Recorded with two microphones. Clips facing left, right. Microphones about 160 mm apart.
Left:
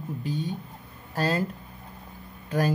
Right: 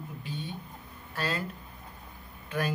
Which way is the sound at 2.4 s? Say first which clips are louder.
Left 6 dB; 40° left (ahead or behind).